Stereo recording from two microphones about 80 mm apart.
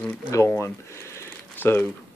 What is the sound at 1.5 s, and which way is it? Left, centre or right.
Speech, left.